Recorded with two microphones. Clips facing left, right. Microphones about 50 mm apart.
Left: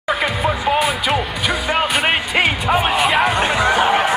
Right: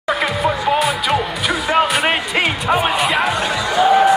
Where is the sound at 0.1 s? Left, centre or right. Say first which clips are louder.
Right 1 dB; centre.